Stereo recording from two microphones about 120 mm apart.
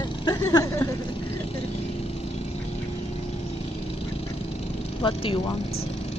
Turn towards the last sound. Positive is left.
turn(degrees=50)  # may be behind; listen again after turning